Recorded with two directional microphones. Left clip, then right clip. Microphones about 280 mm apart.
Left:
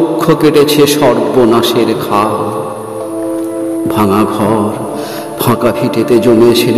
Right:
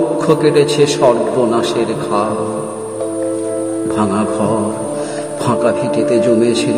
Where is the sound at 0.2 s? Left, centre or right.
Left.